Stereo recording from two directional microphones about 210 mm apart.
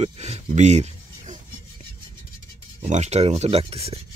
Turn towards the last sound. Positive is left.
turn(degrees=-30)  # may be behind; listen again after turning